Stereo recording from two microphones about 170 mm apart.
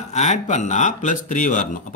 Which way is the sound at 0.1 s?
45° left (ahead or behind).